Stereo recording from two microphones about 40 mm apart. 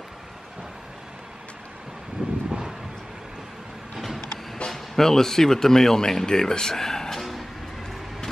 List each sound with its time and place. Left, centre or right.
2.2 s vehicle: right
3.9 s vehicle: centre
4.6 s speech: centre